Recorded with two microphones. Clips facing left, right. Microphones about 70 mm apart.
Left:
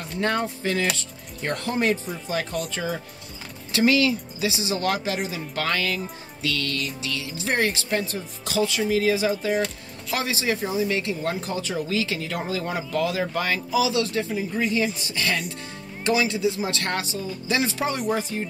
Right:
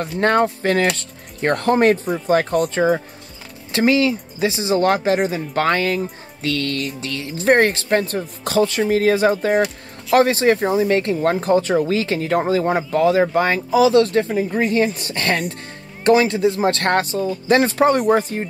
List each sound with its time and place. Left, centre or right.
0.2 s speech: right